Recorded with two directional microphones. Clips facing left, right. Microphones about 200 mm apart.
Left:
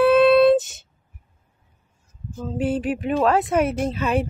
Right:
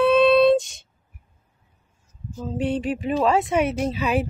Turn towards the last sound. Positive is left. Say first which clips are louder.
# left 1 dB
turn(degrees=0)  # may be behind; listen again after turning